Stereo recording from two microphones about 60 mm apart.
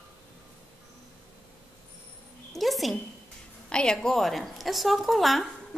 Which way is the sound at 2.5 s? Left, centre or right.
Centre.